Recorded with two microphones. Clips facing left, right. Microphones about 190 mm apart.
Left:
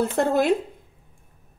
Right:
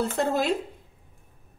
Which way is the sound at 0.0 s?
55° left (ahead or behind).